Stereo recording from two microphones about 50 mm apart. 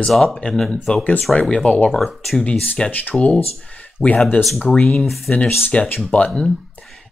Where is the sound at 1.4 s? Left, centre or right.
Centre.